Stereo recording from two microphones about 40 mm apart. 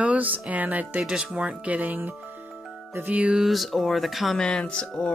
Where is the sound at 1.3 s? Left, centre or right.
Right.